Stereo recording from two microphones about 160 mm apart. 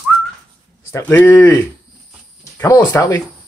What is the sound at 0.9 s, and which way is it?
Speech, 15° left (ahead or behind).